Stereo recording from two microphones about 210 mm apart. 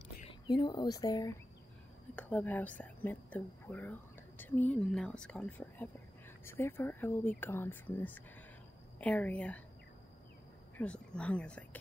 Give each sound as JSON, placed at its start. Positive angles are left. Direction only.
{"t": 0.2, "sound": "speech", "side_deg": 25}
{"t": 10.8, "sound": "speech", "side_deg": 5}